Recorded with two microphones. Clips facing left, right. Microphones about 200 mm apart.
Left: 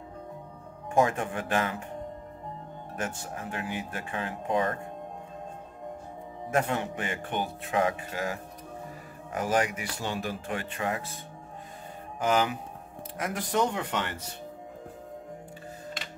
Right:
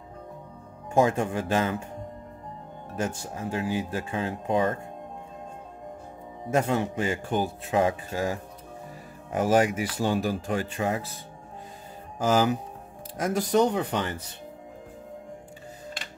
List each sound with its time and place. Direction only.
0.9 s speech: 25° right (ahead or behind)
3.0 s speech: 30° right (ahead or behind)
6.5 s speech: 25° right (ahead or behind)
12.2 s speech: 30° right (ahead or behind)
13.7 s speech: 35° right (ahead or behind)